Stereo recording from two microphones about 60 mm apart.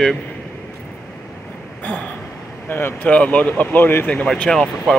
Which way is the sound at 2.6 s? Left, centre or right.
Left.